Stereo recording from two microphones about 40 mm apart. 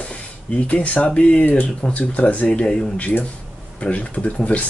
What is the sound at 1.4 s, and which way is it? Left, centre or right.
Speech, left.